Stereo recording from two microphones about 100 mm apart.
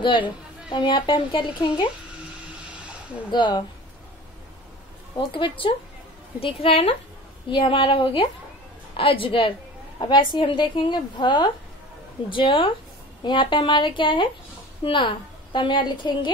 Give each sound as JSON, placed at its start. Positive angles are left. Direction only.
{"t": 0.0, "sound": "a woman's voice", "side_deg": 55}
{"t": 3.3, "sound": "a woman's voice", "side_deg": 50}
{"t": 5.1, "sound": "a woman's voice", "side_deg": 60}
{"t": 6.4, "sound": "a woman's voice", "side_deg": 70}
{"t": 7.4, "sound": "a woman's voice", "side_deg": 55}